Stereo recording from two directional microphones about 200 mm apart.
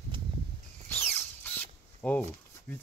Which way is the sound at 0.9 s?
10° left (ahead or behind).